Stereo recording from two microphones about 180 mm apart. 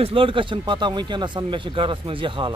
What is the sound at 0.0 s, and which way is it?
Speech, 30° right (ahead or behind).